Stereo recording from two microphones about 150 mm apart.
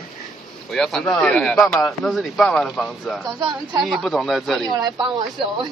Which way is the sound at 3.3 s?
30° right (ahead or behind).